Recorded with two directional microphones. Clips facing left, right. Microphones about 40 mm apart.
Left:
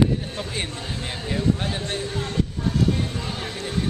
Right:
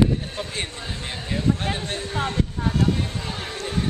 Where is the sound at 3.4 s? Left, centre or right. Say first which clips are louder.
Right 1 dB; centre.